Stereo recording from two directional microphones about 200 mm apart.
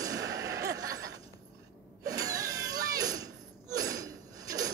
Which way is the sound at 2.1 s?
15° right (ahead or behind).